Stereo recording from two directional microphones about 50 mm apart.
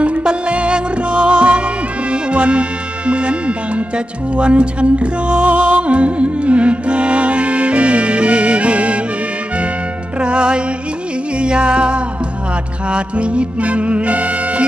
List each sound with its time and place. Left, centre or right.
0.0 s music: right
3.1 s speech: right
10.2 s music: right